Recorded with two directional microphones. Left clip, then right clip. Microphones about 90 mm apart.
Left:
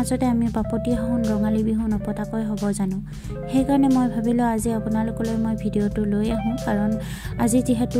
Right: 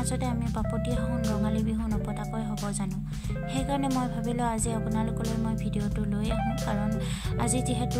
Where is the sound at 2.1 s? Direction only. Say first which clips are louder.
Left 7 dB; 40° left (ahead or behind).